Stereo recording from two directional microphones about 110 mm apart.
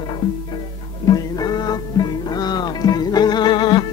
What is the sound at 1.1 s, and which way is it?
Music, 35° left (ahead or behind).